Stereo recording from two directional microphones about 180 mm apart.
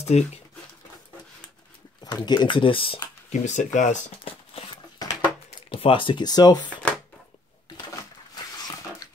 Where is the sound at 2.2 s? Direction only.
25° left (ahead or behind).